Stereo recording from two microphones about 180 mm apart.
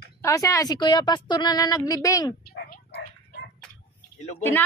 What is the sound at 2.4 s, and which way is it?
Dog, 65° left (ahead or behind).